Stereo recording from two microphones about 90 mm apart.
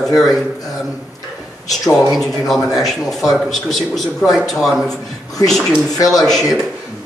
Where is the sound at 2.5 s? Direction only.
Centre (ahead or behind).